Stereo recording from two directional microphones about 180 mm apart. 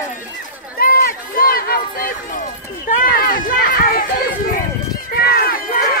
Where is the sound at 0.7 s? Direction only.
55° left (ahead or behind).